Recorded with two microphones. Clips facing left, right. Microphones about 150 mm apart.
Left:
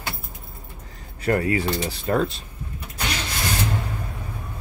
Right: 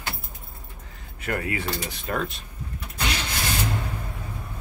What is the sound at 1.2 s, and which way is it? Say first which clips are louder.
Speech: left 7 dB; 35° left (ahead or behind).